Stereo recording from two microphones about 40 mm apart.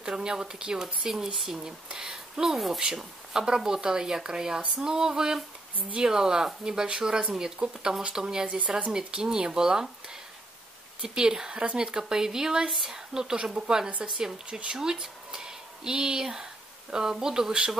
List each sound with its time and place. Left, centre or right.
0.0 s speech: centre
8.5 s speech: right
8.9 s speech: centre
11.0 s speech: centre
13.8 s speech: right
14.8 s speech: centre